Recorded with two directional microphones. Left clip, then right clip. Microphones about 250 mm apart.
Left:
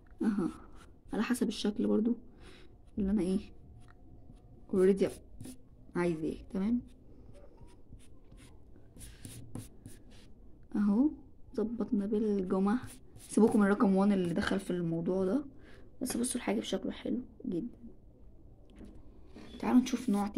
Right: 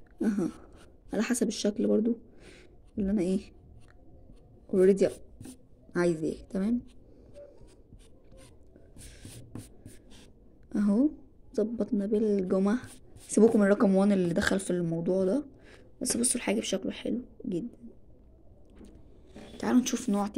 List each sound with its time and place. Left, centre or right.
0.2 s a sound: centre
1.1 s speech: centre
4.6 s a woman's voice: centre
10.7 s a woman's voice: centre
19.5 s speech: centre